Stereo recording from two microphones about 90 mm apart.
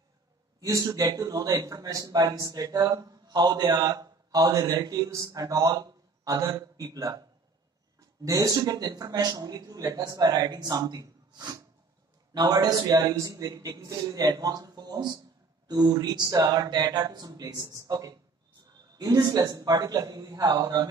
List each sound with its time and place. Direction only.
0.6 s a man's voice: 40° right (ahead or behind)